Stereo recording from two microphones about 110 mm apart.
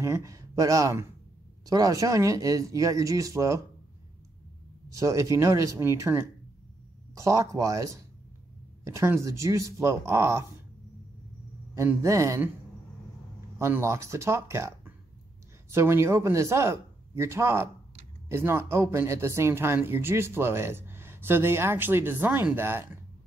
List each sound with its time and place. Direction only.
0.0 s speech: 25° right (ahead or behind)
4.9 s speech: 30° right (ahead or behind)
12.0 s speech: 25° right (ahead or behind)
13.6 s speech: 25° right (ahead or behind)
15.7 s speech: 25° right (ahead or behind)